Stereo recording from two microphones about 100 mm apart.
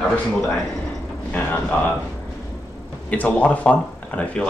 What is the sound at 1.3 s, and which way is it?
Speech, 15° left (ahead or behind).